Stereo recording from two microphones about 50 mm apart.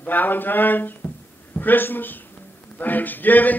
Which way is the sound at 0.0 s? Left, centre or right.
Left.